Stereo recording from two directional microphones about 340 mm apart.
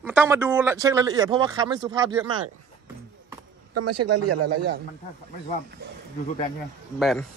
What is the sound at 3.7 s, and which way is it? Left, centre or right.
Speech, right.